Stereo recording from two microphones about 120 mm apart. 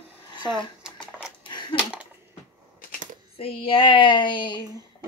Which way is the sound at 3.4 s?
50° left (ahead or behind).